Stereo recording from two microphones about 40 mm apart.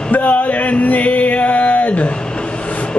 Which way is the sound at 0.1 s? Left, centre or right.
Left.